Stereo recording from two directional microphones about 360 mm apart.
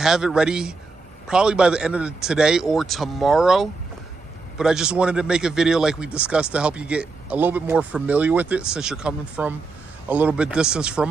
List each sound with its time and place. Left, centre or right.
0.0 s speech: centre